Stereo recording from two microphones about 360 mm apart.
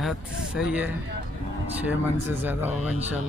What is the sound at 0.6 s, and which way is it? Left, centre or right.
Speech, centre.